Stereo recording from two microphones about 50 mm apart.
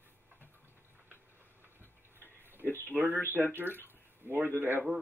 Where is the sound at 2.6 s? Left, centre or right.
Centre.